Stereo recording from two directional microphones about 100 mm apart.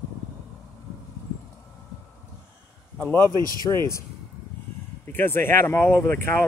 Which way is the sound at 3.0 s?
25° left (ahead or behind).